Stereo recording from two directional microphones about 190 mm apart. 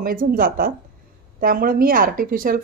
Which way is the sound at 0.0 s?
50° right (ahead or behind).